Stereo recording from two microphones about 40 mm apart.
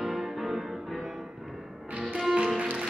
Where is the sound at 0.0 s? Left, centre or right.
Centre.